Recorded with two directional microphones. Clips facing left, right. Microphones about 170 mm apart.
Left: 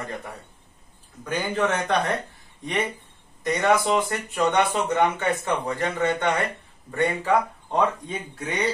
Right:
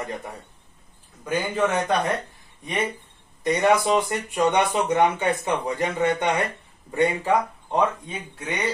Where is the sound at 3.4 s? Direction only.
15° right (ahead or behind).